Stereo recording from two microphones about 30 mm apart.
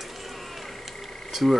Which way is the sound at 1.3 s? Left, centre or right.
Centre.